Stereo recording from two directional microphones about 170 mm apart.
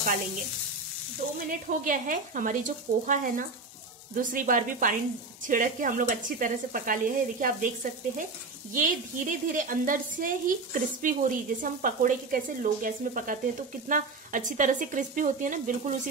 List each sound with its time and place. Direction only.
1.5 s a woman's voice: 50° right (ahead or behind)